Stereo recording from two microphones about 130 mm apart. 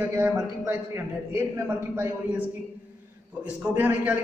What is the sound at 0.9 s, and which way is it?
A man's voice, 20° right (ahead or behind).